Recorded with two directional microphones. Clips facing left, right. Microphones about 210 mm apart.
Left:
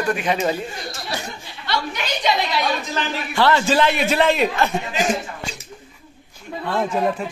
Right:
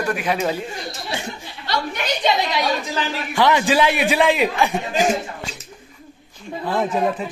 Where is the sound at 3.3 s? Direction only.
15° right (ahead or behind).